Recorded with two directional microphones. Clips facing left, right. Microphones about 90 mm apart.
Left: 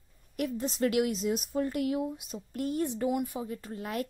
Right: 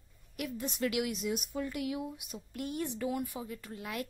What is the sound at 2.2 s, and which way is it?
A woman's voice, 35° left (ahead or behind).